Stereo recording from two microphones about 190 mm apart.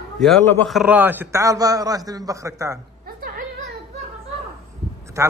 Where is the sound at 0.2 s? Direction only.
5° left (ahead or behind); by 2.8 s 15° right (ahead or behind).